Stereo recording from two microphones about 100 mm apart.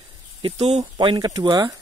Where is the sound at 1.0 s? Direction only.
45° right (ahead or behind).